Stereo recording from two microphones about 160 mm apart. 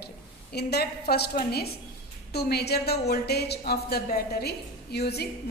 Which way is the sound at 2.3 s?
90° left.